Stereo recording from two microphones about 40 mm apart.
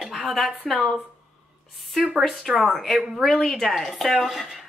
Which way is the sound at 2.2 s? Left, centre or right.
Centre.